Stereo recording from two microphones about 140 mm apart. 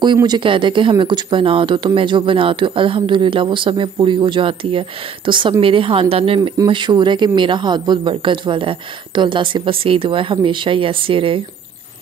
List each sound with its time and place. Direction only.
0.0 s speech: 30° right (ahead or behind)